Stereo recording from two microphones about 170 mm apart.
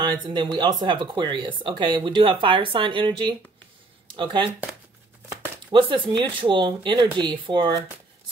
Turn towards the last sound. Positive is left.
turn(degrees=-30)  # may be behind; listen again after turning